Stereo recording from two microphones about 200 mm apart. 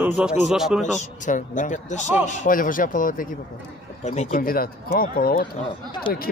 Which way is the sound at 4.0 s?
35° left (ahead or behind).